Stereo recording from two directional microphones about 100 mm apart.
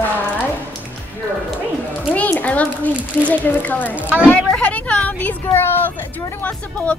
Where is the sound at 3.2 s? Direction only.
15° left (ahead or behind).